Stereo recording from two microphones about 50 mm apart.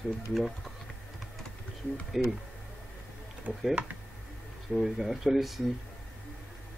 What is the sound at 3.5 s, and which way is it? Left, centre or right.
Speech, right.